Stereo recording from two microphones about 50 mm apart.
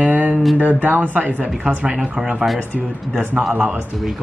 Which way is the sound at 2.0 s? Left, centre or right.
Centre.